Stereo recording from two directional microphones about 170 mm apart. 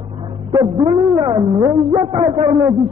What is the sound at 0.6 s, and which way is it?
A man's voice, 25° right (ahead or behind).